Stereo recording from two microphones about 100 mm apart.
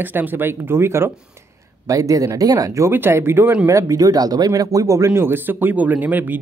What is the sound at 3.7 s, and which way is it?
Speech, 35° right (ahead or behind).